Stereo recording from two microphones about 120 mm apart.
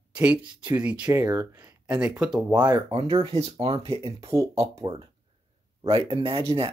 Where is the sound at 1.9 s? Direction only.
10° right (ahead or behind).